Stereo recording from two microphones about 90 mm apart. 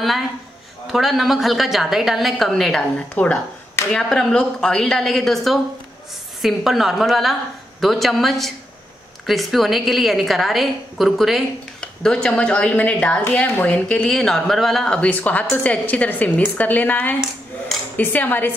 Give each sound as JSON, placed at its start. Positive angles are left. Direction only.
{"t": 0.9, "sound": "a woman's voice", "side_deg": 0}
{"t": 3.2, "sound": "a woman's voice", "side_deg": 20}
{"t": 3.9, "sound": "a woman's voice", "side_deg": 5}